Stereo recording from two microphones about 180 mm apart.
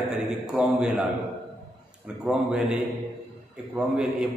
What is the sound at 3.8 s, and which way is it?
Speech, 5° right (ahead or behind).